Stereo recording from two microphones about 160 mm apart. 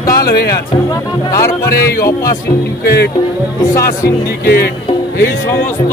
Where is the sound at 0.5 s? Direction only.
20° left (ahead or behind).